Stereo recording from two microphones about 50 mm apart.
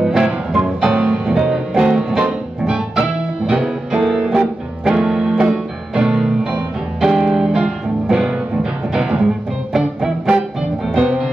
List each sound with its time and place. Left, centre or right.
0.0 s music: centre
1.2 s music: centre